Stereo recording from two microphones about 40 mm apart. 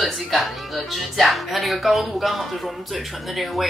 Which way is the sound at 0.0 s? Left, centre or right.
Centre.